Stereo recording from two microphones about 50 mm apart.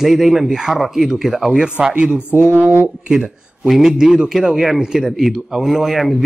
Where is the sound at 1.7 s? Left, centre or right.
Right.